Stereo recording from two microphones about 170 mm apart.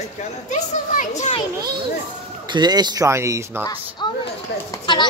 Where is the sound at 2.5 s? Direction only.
25° right (ahead or behind).